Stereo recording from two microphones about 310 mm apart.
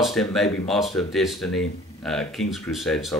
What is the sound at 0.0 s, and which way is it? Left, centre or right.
Speech, centre.